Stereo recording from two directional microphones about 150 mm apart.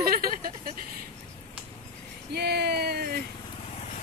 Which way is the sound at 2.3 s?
90° right.